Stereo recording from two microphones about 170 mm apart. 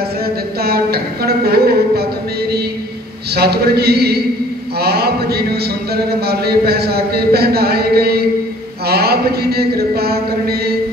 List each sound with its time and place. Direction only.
0.6 s a woman's voice: 65° right (ahead or behind)
3.3 s a man's voice: 70° right (ahead or behind)